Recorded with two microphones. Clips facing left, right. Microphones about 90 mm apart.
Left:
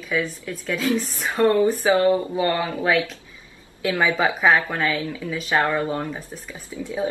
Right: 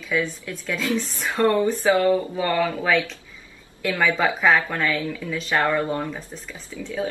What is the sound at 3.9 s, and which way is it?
Speech, 15° left (ahead or behind).